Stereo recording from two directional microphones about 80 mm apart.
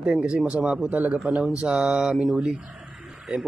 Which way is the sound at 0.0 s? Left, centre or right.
Centre.